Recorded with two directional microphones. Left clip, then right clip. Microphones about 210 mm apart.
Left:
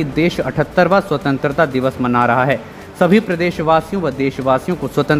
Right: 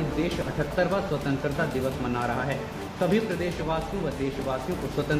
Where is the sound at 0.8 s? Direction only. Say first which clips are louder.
Left 13 dB; 55° left (ahead or behind).